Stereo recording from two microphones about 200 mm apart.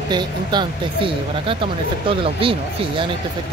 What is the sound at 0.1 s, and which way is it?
Speech, 20° right (ahead or behind).